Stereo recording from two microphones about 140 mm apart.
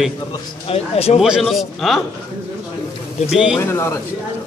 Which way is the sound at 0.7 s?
45° left (ahead or behind).